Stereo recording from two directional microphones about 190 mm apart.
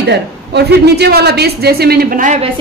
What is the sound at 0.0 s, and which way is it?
A woman's voice, 60° right (ahead or behind).